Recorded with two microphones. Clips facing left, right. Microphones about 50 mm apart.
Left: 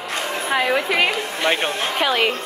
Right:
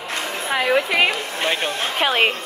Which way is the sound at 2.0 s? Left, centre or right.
Right.